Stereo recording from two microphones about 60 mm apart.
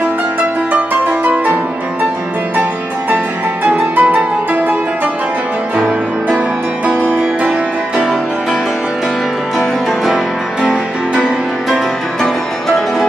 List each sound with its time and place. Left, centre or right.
0.7 s music: right
3.9 s music: right
5.8 s music: right
9.6 s music: centre
12.2 s music: centre